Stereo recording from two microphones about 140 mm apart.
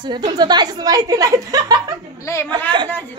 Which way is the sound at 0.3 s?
30° right (ahead or behind).